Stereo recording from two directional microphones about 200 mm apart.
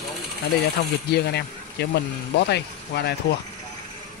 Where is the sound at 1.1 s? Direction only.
55° left (ahead or behind).